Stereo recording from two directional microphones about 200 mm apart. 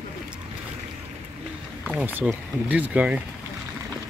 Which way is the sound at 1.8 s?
10° right (ahead or behind).